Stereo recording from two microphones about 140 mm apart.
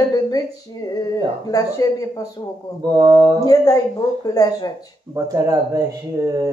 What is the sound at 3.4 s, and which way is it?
Speech, 25° left (ahead or behind).